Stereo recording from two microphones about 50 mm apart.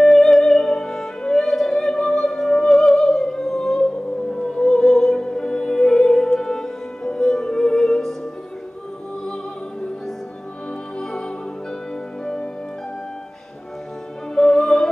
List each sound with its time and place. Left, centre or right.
0.0 s music: centre
11.0 s music: centre
14.3 s music: centre